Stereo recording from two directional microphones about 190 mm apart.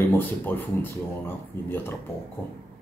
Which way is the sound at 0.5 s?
10° left (ahead or behind).